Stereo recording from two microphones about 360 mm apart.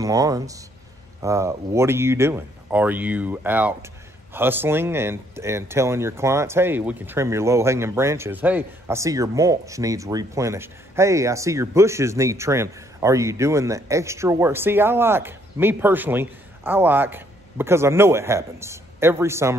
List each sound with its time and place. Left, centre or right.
0.0 s speech: centre